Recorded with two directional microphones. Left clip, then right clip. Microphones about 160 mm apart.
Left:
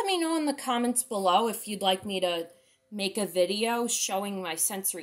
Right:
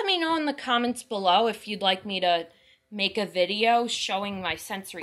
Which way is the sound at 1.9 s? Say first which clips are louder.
Right 1 dB; 40° right (ahead or behind).